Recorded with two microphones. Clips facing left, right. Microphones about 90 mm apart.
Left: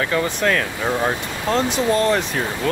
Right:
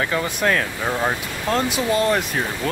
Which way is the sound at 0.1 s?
10° right (ahead or behind).